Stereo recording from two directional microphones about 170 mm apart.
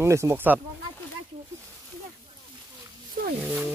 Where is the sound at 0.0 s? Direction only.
15° right (ahead or behind).